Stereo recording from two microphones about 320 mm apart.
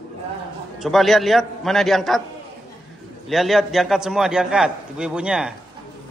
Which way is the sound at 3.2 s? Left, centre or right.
Centre.